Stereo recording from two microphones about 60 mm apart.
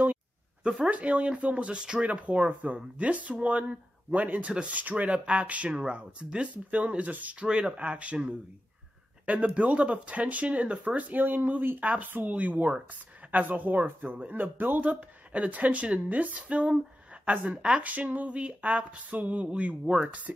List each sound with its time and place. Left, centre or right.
0.7 s speech: centre
7.4 s speech: centre
19.8 s speech: centre
20.3 s speech: right